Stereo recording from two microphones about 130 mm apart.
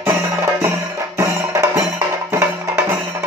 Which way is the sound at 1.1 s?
25° right (ahead or behind).